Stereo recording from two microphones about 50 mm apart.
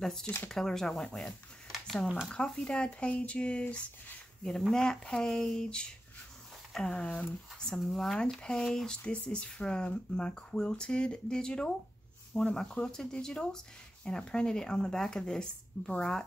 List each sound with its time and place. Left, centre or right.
0.0 s speech: centre
2.3 s speech: centre
4.4 s speech: centre
7.9 s speech: centre
8.4 s speech: centre
9.0 s speech: left